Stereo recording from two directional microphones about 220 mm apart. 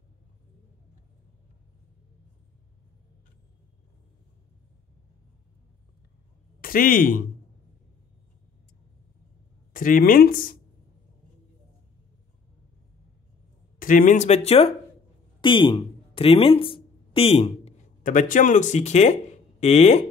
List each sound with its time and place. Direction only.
6.6 s speech: 40° left (ahead or behind)
9.7 s speech: 40° left (ahead or behind)
13.7 s speech: 40° left (ahead or behind)